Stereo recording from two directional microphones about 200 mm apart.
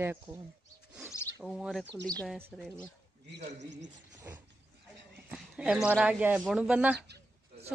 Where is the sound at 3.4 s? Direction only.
60° right (ahead or behind).